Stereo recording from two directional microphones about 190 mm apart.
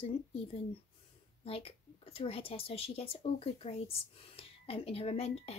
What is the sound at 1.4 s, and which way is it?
Speech, 30° left (ahead or behind).